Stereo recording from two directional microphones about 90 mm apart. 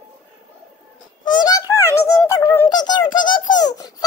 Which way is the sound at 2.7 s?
55° left (ahead or behind).